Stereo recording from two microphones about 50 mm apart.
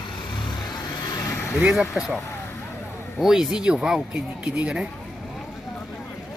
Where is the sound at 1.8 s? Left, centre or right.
Left.